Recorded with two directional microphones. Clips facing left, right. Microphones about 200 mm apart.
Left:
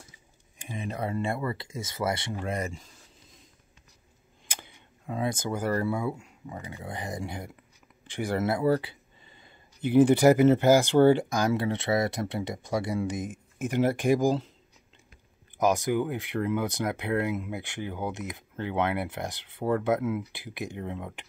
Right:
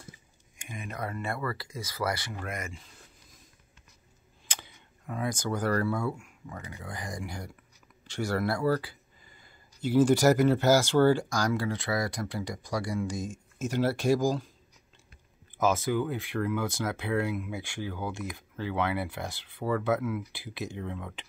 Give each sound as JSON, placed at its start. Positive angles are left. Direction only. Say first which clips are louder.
{"t": 0.6, "sound": "speech", "louder": "left 4 dB", "side_deg": 30}
{"t": 5.0, "sound": "speech", "louder": "left 2 dB", "side_deg": 25}
{"t": 5.5, "sound": "speech", "louder": "right 2 dB", "side_deg": 10}
{"t": 8.0, "sound": "a sound", "louder": "left 1 dB", "side_deg": 15}
{"t": 10.2, "sound": "speech", "louder": "left 3 dB", "side_deg": 15}
{"t": 15.5, "sound": "speech", "louder": "left 2 dB", "side_deg": 15}